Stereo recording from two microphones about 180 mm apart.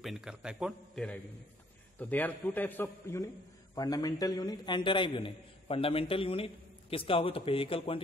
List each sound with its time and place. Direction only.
0.0 s a man's voice: centre (ahead or behind); by 8.0 s 30° left (ahead or behind)